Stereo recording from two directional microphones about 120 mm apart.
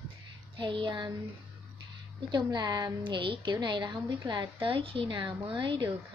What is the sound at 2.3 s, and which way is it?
A woman's voice, 35° right (ahead or behind).